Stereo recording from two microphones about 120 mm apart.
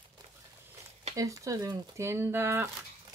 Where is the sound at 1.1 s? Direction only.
25° right (ahead or behind).